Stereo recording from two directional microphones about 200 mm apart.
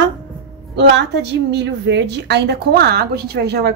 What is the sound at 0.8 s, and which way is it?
A woman's voice, 60° right (ahead or behind).